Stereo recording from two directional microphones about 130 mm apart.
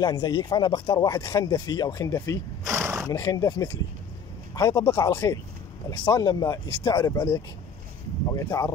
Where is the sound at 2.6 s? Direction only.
20° right (ahead or behind).